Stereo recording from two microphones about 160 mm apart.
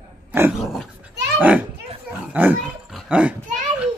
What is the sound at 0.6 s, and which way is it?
Dog, centre (ahead or behind).